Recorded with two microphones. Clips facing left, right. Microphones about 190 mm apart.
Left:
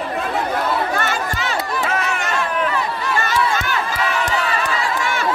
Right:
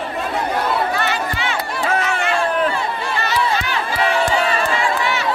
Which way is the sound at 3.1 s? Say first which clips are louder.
Even; 45° left (ahead or behind).